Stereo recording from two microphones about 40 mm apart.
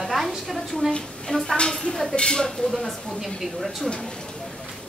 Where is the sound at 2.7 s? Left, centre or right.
Centre.